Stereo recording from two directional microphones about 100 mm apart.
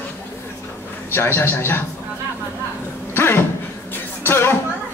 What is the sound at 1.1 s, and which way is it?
Speech, 20° left (ahead or behind).